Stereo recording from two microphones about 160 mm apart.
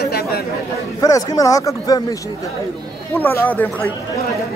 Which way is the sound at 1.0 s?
20° left (ahead or behind).